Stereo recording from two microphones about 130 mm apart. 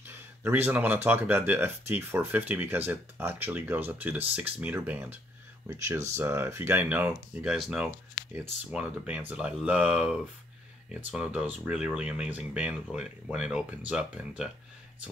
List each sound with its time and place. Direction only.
0.0 s speech: 15° right (ahead or behind)